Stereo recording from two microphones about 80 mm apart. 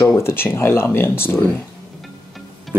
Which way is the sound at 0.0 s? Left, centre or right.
Left.